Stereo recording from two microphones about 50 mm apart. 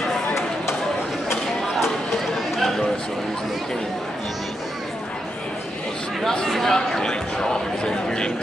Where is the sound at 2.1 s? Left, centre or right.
Centre.